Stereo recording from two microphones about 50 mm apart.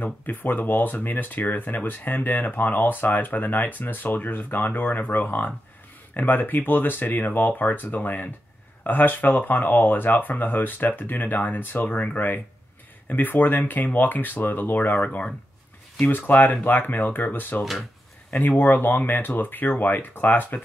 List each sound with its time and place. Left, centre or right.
0.0 s speech: left